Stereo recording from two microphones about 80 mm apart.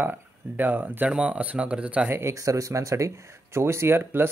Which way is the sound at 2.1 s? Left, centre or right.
Right.